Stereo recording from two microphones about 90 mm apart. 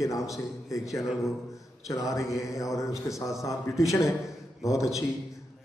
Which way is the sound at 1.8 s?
35° left (ahead or behind).